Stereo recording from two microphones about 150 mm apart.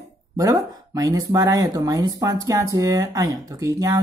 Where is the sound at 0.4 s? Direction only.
25° right (ahead or behind).